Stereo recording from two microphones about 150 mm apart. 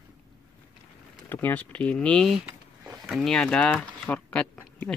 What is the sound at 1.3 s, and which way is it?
Speech, 10° left (ahead or behind).